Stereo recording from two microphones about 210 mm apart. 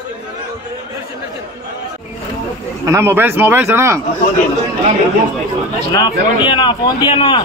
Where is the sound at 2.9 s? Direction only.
10° right (ahead or behind).